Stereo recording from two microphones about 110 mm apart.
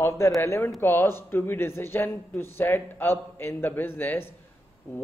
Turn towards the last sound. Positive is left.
turn(degrees=20)  # may be behind; listen again after turning